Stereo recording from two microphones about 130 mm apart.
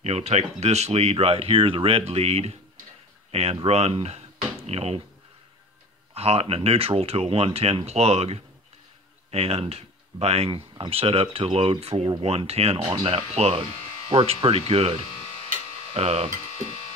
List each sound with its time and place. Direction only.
0.0 s speech: 55° right (ahead or behind)
4.4 s a sound: 50° right (ahead or behind)
6.1 s speech: 50° right (ahead or behind)
15.5 s electric shaver: 55° right (ahead or behind)